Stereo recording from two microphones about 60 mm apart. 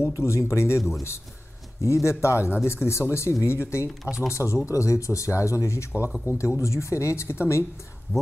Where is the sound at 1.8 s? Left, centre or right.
Left.